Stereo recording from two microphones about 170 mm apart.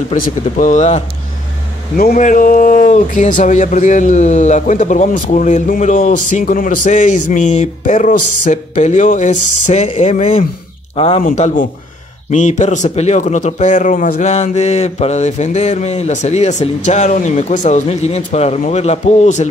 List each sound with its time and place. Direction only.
0.1 s speech: 50° left (ahead or behind)
2.0 s speech: 55° left (ahead or behind); by 11.2 s 35° left (ahead or behind)
11.2 s speech: 45° left (ahead or behind)